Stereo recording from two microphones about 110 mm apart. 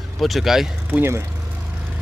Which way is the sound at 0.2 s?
Centre (ahead or behind).